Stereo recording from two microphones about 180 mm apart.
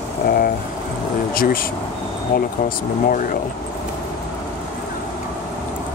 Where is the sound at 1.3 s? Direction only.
55° left (ahead or behind).